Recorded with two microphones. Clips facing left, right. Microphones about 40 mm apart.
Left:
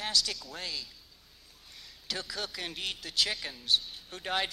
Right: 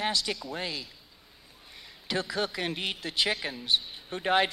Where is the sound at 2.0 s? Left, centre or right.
Centre.